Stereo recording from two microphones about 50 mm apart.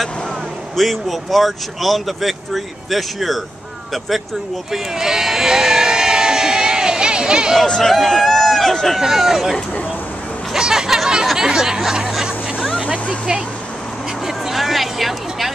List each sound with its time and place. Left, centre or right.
0.7 s speech: centre
4.7 s crowd: centre
7.6 s speech: centre
7.9 s a sound: centre
9.0 s speech: centre
10.5 s a sound: centre
12.1 s hubbub: centre
12.6 s vehicle: left
14.2 s a sound: centre